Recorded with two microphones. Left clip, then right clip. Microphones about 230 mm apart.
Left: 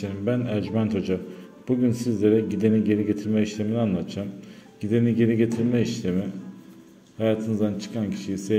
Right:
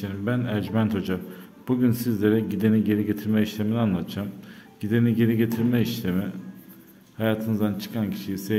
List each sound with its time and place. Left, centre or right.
0.0 s speech: centre